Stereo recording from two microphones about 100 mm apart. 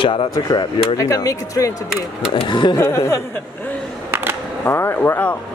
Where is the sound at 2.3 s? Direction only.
50° left (ahead or behind).